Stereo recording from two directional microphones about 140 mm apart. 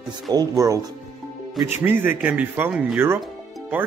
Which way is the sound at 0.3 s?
25° right (ahead or behind).